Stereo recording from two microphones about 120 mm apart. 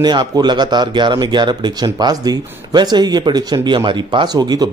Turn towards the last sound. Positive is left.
turn(degrees=-35)  # may be behind; listen again after turning